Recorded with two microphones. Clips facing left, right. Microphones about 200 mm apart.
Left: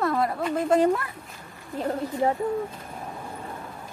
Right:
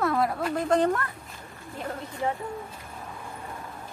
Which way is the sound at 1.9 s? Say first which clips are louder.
Left 6 dB; 35° left (ahead or behind).